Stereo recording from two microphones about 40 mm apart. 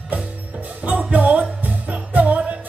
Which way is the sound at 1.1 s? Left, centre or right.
Right.